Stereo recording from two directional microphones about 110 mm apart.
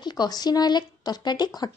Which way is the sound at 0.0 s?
40° left (ahead or behind).